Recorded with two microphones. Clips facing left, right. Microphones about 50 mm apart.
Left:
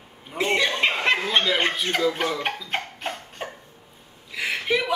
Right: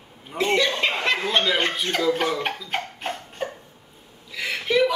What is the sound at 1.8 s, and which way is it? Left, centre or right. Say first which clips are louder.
Speech: right 1 dB; centre.